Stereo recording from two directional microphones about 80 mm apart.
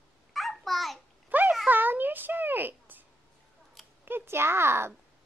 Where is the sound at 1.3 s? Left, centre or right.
Right.